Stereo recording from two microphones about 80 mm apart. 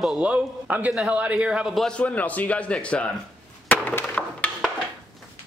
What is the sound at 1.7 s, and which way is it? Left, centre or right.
Speech, centre.